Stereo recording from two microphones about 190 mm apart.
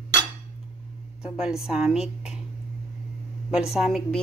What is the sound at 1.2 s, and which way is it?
Speech, 5° right (ahead or behind).